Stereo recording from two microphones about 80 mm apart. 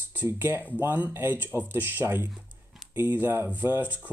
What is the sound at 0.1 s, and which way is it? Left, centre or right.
Speech, right.